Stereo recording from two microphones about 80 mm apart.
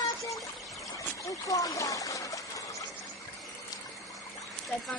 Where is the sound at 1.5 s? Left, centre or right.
Left.